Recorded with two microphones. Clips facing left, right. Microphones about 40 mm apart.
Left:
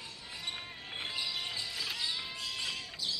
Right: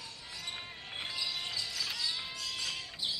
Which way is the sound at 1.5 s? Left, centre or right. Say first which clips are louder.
Even; left.